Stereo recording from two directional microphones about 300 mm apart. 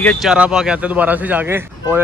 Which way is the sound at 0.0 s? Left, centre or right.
Centre.